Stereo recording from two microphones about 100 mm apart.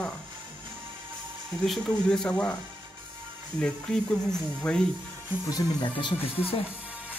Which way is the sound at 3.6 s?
10° left (ahead or behind).